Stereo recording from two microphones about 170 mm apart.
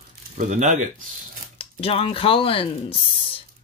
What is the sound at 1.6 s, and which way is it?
Speech, 35° left (ahead or behind).